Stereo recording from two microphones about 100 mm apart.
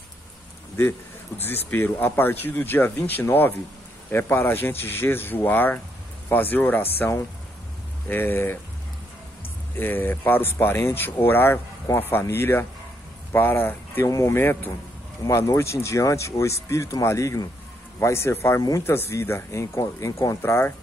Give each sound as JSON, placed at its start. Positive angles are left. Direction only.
{"t": 1.4, "sound": "speech", "side_deg": 20}
{"t": 9.8, "sound": "speech", "side_deg": 20}